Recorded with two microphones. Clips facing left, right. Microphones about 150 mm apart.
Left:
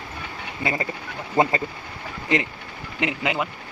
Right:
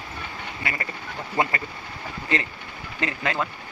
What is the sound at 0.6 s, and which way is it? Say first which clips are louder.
Speech: left 7 dB; 25° left (ahead or behind).